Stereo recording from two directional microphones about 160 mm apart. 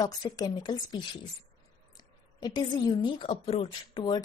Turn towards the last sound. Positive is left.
turn(degrees=35)  # may be behind; listen again after turning